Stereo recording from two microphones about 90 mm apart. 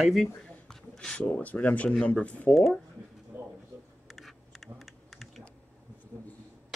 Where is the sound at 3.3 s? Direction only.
25° right (ahead or behind).